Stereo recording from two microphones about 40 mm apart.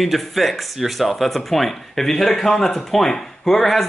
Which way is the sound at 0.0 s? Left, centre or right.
Centre.